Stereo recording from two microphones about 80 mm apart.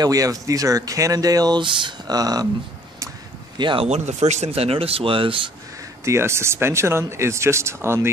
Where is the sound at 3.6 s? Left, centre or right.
Right.